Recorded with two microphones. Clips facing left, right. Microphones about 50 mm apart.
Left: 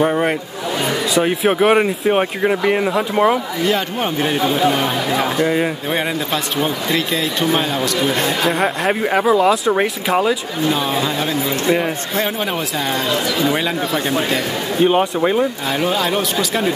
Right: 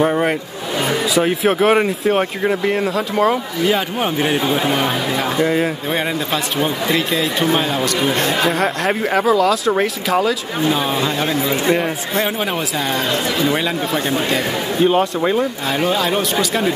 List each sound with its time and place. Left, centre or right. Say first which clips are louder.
0.0 s a sound: even; centre
0.8 s a man's voice: right 1 dB; centre; by 3.3 s left
3.6 s a man's voice: right 2 dB; centre
13.5 s a man's voice: even; centre
14.8 s speech: left 1 dB; centre
15.8 s a man's voice: right 1 dB; centre